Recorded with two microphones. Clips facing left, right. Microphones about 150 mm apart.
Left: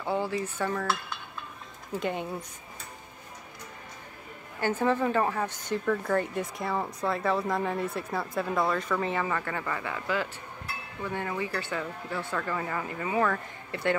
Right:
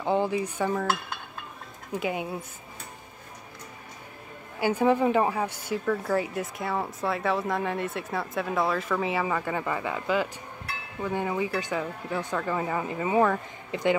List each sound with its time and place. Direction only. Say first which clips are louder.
0.0 s speech: right 4 dB; 20° right (ahead or behind)
1.9 s speech: right 1 dB; 5° right (ahead or behind)
4.6 s speech: right 3 dB; 10° right (ahead or behind)